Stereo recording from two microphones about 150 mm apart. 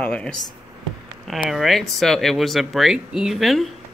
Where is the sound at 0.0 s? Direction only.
5° left (ahead or behind).